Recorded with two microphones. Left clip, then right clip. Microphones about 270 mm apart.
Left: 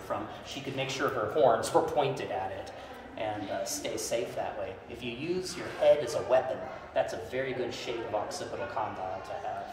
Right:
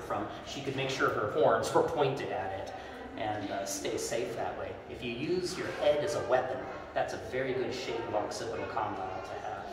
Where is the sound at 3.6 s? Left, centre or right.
Left.